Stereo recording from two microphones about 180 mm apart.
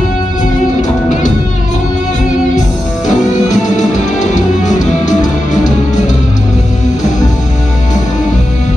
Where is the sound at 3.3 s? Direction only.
40° left (ahead or behind).